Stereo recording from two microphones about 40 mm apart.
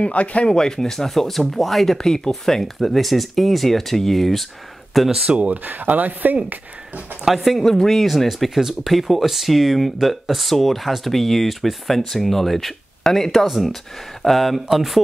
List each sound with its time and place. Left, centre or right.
0.0 s speech: left
0.5 s speech: centre
2.0 s speech: centre
5.3 s speech: right
5.6 s speech: right
7.4 s speech: centre